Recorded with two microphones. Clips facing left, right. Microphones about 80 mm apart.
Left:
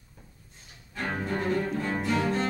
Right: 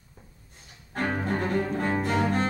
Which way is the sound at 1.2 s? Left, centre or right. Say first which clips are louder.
Left 2 dB; right.